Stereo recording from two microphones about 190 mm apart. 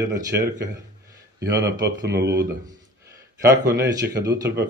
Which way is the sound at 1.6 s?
65° right (ahead or behind).